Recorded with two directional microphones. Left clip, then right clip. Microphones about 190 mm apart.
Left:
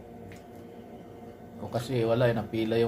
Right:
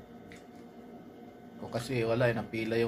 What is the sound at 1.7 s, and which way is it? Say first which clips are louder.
A man's voice: left 4 dB; 20° right (ahead or behind).